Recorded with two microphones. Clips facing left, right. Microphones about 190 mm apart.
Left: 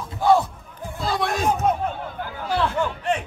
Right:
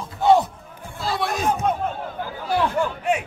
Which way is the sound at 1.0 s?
Centre (ahead or behind).